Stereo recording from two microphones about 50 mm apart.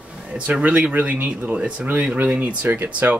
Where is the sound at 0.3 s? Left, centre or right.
Right.